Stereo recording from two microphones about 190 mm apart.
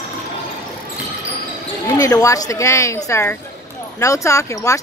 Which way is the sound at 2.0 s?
15° left (ahead or behind).